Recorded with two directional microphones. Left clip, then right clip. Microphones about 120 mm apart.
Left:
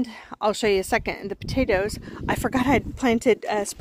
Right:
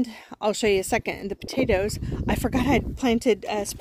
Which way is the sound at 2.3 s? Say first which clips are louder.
Left 2 dB; 15° right (ahead or behind).